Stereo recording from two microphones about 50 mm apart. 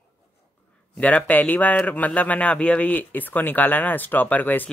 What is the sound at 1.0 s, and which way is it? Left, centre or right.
Speech, left.